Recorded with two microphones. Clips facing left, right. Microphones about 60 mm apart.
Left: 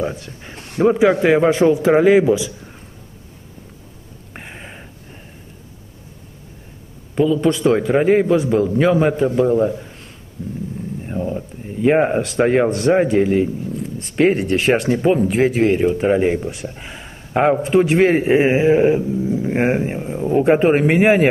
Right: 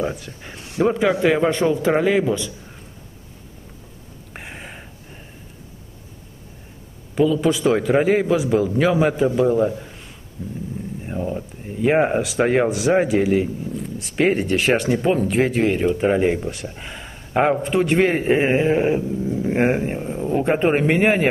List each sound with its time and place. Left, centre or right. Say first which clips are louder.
0.0 s speech: left 1 dB; centre
4.3 s a sound: even; centre
7.2 s speech: left 2 dB; centre
10.4 s dog: left 3 dB; centre
11.0 s speech: left 2 dB; centre